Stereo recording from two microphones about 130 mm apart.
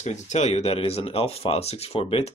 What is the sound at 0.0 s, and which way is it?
Speech, 60° left (ahead or behind).